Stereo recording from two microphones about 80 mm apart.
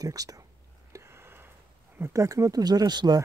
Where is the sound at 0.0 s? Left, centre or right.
Right.